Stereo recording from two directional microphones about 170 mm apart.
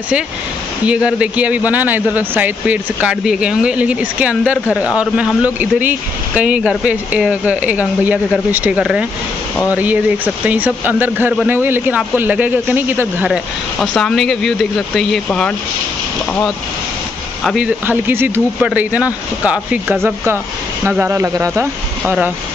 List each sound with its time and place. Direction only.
0.8 s speech: 5° right (ahead or behind)
13.3 s speech: centre (ahead or behind)
17.4 s speech: centre (ahead or behind)
17.8 s speech: 10° right (ahead or behind)